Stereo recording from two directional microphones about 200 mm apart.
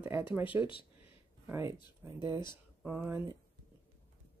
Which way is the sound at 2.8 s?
10° right (ahead or behind).